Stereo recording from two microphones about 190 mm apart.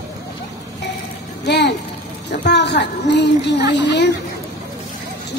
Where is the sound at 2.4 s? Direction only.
65° left (ahead or behind).